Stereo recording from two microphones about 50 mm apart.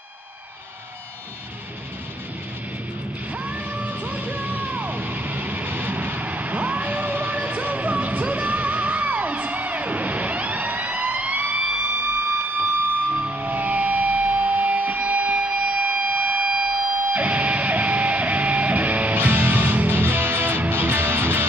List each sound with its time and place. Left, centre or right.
3.4 s music: right
13.0 s music: right
19.1 s music: right